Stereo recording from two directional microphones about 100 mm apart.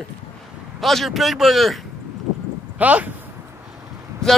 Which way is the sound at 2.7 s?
15° right (ahead or behind).